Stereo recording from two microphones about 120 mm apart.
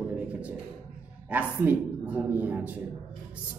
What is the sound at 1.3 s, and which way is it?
A man's voice, 15° right (ahead or behind).